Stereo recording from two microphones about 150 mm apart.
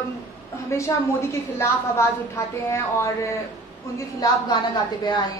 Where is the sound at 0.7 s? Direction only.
20° left (ahead or behind).